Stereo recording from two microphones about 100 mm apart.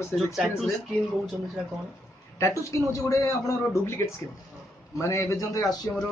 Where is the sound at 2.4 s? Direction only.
30° left (ahead or behind).